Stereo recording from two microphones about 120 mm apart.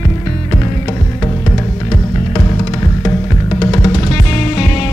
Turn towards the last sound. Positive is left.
turn(degrees=30)  # may be behind; listen again after turning